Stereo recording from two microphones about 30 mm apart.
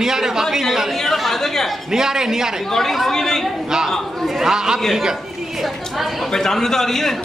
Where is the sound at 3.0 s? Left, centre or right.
Centre.